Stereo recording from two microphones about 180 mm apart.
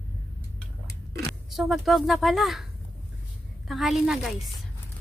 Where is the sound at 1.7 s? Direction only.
Centre (ahead or behind).